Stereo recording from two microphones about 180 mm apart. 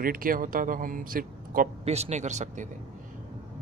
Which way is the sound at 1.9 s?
35° right (ahead or behind).